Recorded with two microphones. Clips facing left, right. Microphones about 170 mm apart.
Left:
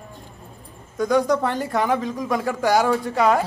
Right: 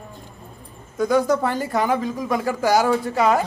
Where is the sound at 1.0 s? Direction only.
5° right (ahead or behind).